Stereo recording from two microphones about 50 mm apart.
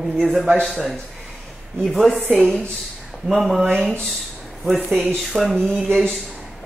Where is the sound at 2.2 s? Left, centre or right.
Right.